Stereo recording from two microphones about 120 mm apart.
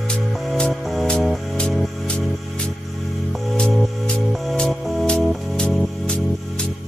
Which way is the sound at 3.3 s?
Centre (ahead or behind).